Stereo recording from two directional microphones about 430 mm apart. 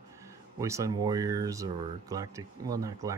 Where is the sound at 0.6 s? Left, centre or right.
Centre.